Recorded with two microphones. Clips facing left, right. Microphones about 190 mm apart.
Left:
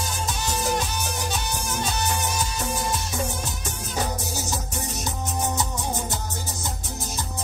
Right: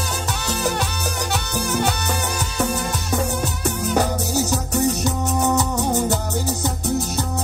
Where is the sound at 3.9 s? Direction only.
65° right (ahead or behind).